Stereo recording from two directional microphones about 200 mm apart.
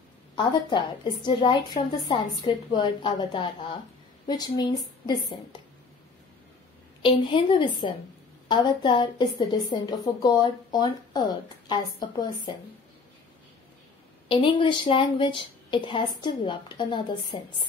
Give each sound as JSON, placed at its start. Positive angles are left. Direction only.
{"t": 0.4, "sound": "a woman's voice", "side_deg": 25}
{"t": 7.0, "sound": "a woman's voice", "side_deg": 25}
{"t": 14.3, "sound": "a woman's voice", "side_deg": 25}